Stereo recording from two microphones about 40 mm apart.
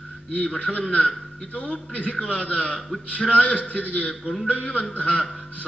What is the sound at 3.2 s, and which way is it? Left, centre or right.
Speech, left.